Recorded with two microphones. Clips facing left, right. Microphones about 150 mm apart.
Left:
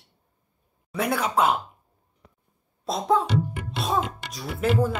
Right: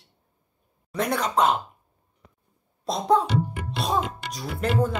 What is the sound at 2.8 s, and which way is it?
A child's voice, centre (ahead or behind).